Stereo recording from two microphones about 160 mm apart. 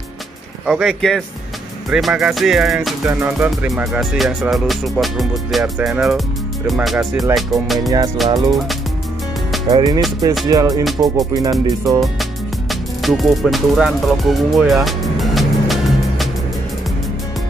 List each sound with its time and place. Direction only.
0.7 s music: centre (ahead or behind)
3.1 s music: 15° right (ahead or behind)
3.8 s music: 5° right (ahead or behind)
9.7 s music: 25° right (ahead or behind)
12.0 s speech: centre (ahead or behind)
14.9 s music: centre (ahead or behind)